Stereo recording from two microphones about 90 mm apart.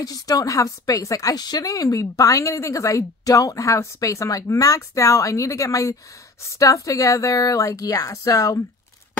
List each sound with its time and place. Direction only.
0.0 s a woman's voice: 40° left (ahead or behind)